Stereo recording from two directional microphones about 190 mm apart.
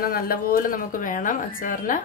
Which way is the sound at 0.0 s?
50° left (ahead or behind).